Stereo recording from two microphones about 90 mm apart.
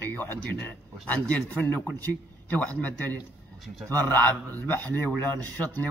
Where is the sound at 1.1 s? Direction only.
20° left (ahead or behind).